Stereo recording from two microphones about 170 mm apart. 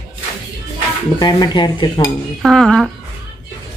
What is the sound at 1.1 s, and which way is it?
Speech, 25° left (ahead or behind).